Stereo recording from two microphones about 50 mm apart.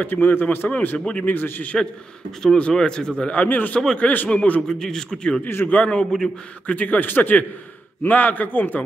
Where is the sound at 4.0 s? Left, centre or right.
Left.